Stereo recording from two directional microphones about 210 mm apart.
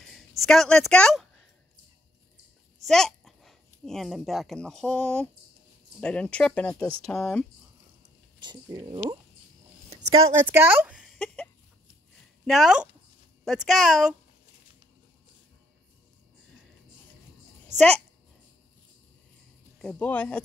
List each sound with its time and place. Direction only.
0.4 s speech: centre (ahead or behind)
2.8 s a child's voice: centre (ahead or behind)
8.4 s speech: 20° right (ahead or behind)
10.5 s a sound: 10° right (ahead or behind)
12.4 s speech: centre (ahead or behind)
17.7 s speech: 5° left (ahead or behind)
19.8 s speech: 5° left (ahead or behind)